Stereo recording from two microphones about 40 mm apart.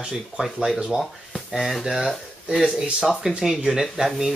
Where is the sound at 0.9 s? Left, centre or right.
Centre.